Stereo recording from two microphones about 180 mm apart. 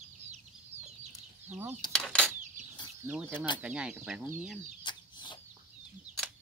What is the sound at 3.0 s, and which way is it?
Speech, 15° right (ahead or behind).